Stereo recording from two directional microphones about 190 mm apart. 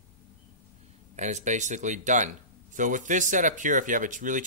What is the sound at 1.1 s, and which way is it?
Speech, 40° right (ahead or behind).